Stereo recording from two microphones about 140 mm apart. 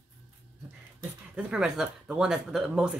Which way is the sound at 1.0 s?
5° right (ahead or behind).